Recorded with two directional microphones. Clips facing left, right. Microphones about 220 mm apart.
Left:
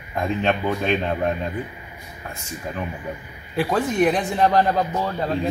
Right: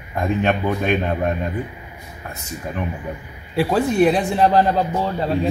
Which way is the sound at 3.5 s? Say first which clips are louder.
Right 3 dB; 30° right (ahead or behind).